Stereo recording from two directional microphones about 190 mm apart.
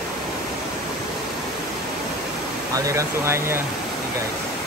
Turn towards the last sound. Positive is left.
turn(degrees=-15)  # may be behind; listen again after turning